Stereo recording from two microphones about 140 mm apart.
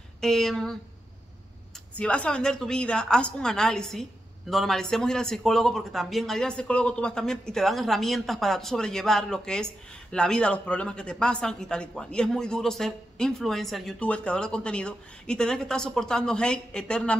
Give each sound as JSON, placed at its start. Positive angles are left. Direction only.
{"t": 0.2, "sound": "a woman's voice", "side_deg": 5}
{"t": 2.0, "sound": "a woman's voice", "side_deg": 10}